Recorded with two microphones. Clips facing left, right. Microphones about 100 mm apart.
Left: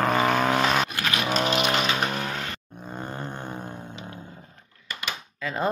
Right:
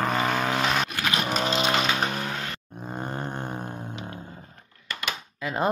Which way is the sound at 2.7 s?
10° right (ahead or behind).